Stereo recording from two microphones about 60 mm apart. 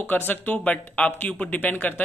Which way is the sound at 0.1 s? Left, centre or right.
Left.